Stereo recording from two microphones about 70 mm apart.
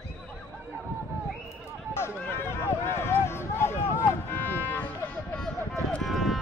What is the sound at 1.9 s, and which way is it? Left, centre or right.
Run, left.